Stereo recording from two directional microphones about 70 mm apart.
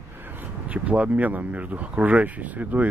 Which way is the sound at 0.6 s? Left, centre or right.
Centre.